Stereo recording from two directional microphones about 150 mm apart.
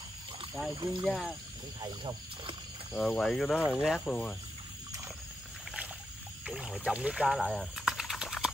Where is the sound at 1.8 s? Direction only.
30° right (ahead or behind).